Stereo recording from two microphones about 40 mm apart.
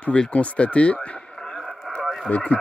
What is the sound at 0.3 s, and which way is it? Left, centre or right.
Speech, left.